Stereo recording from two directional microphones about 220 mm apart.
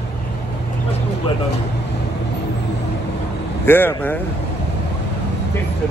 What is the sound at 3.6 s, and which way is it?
Speech, 10° left (ahead or behind).